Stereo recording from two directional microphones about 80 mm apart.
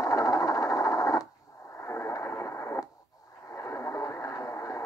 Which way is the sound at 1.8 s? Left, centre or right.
Left.